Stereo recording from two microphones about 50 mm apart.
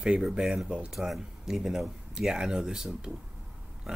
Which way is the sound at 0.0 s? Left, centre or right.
Right.